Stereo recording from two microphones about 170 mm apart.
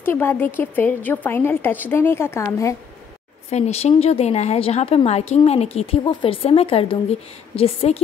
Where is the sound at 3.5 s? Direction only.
40° left (ahead or behind).